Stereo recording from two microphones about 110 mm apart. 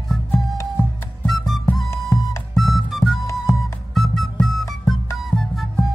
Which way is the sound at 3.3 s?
30° left (ahead or behind).